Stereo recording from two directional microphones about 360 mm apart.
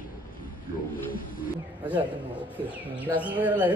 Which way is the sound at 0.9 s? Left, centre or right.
Left.